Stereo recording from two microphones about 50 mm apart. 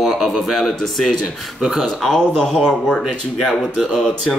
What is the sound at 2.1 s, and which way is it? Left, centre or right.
Speech, centre.